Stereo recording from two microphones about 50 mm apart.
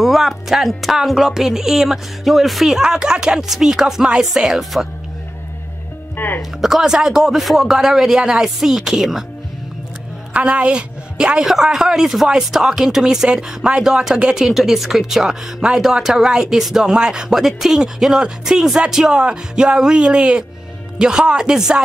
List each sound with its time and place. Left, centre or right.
0.0 s speech: centre
0.9 s speech: centre
2.8 s speech: centre
6.1 s music: left
6.6 s speech: centre
10.5 s a woman's voice: right